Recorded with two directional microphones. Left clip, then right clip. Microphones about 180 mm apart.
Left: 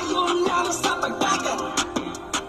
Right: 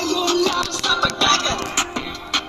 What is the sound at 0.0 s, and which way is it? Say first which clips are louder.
Music: right 3 dB; 70° right (ahead or behind).